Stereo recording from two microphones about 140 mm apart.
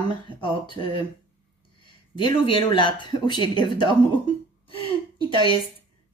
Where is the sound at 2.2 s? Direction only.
35° left (ahead or behind).